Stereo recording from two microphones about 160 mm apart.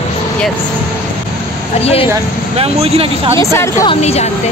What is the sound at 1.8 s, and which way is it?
Speech, 40° left (ahead or behind).